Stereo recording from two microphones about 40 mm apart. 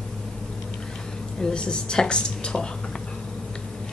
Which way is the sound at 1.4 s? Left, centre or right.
Left.